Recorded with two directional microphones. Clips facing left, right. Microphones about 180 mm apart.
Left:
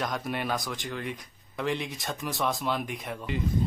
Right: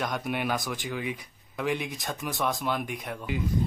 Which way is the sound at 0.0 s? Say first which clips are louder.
Right 1 dB; centre (ahead or behind).